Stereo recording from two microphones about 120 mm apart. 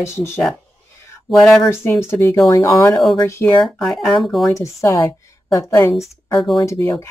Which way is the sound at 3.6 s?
Centre (ahead or behind).